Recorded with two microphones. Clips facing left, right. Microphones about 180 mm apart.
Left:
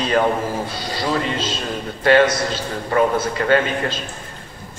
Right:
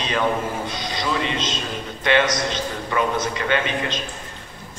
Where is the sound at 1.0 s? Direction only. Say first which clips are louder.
Left 3 dB; 40° left (ahead or behind).